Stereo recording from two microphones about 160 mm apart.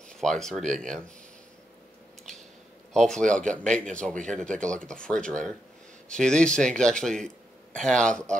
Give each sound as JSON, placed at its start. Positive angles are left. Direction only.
{"t": 0.1, "sound": "speech", "side_deg": 5}
{"t": 2.9, "sound": "speech", "side_deg": 5}